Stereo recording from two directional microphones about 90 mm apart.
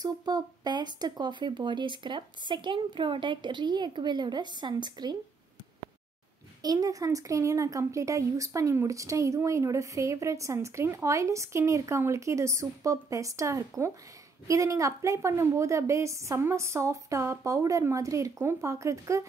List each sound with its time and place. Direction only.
0.0 s speech: 50° right (ahead or behind)
6.6 s speech: 45° right (ahead or behind)